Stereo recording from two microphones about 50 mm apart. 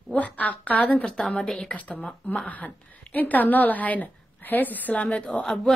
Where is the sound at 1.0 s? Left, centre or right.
Centre.